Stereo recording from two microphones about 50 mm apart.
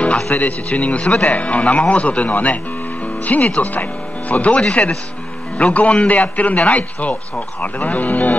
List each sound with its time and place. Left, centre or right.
0.3 s a man's voice: left